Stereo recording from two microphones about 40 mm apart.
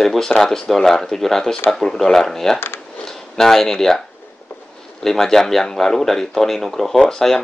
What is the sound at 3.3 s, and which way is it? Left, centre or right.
Speech, centre.